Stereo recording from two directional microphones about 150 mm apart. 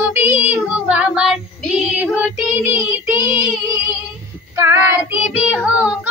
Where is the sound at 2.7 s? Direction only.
10° right (ahead or behind).